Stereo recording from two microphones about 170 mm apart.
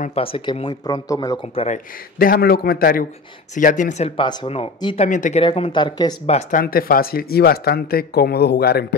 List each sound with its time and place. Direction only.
0.1 s speech: 35° left (ahead or behind)
1.5 s speech: 35° left (ahead or behind)
2.1 s speech: 60° left (ahead or behind)
4.2 s speech: 25° left (ahead or behind); by 5.4 s 45° left (ahead or behind)
5.4 s speech: 30° left (ahead or behind)
6.2 s speech: 40° left (ahead or behind)
6.6 s speech: 60° left (ahead or behind)